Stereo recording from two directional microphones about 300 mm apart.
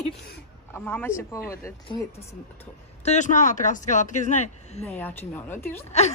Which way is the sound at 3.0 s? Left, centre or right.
Left.